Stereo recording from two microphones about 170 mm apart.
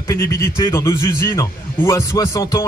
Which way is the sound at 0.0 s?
15° left (ahead or behind).